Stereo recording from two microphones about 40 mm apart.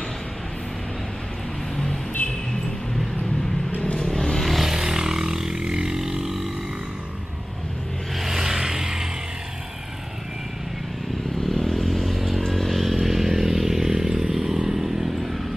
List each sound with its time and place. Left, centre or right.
3.8 s vehicle: left
4.1 s vehicle: centre
4.6 s vehicle: centre
8.2 s vehicle: centre
11.4 s vehicle: centre
12.4 s a sound: centre
14.6 s vehicle: centre